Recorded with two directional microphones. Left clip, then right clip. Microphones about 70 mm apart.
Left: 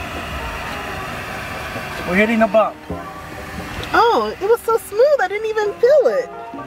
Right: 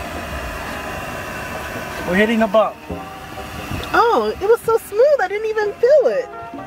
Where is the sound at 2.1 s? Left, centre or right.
Centre.